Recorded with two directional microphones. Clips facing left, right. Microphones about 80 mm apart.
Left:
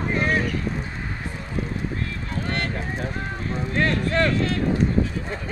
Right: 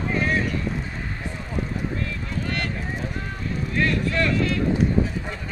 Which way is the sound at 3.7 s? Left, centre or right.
Left.